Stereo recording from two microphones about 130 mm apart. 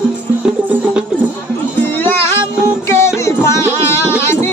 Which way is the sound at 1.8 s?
15° left (ahead or behind).